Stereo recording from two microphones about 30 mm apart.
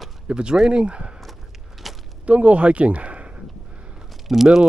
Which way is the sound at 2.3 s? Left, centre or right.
Right.